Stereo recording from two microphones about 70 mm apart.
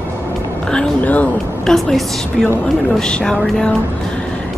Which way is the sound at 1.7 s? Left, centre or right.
Centre.